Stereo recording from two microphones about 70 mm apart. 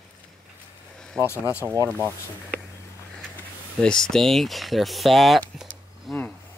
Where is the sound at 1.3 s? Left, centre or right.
Left.